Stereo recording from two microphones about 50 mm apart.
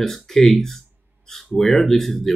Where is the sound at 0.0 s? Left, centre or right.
Centre.